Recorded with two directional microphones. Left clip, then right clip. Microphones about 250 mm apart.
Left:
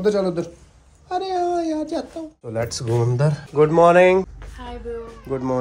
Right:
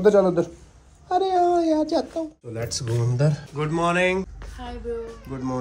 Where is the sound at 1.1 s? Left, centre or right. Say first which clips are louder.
Right 2 dB; centre.